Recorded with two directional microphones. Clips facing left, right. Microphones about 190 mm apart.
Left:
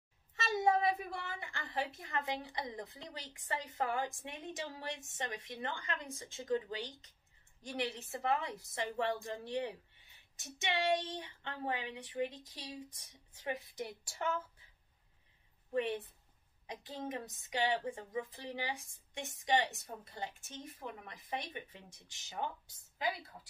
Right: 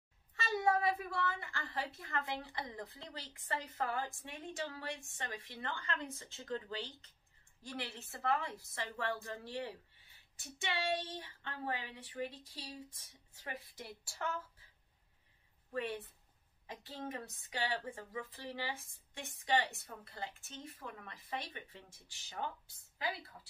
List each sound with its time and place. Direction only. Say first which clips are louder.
0.4 s a child's voice: left 2 dB; 20° left (ahead or behind)
15.7 s a woman's voice: left 5 dB; 20° left (ahead or behind)